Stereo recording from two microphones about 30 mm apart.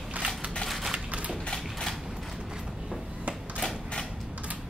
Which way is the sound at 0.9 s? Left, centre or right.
Right.